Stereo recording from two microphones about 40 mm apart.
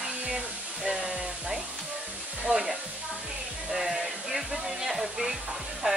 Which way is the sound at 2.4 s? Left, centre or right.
Centre.